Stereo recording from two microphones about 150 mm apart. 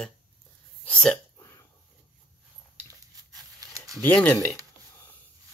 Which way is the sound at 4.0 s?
15° left (ahead or behind).